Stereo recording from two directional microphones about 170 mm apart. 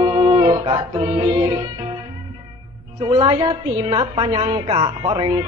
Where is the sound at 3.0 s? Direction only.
30° right (ahead or behind).